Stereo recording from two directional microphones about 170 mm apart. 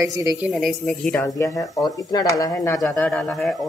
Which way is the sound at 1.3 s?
20° left (ahead or behind).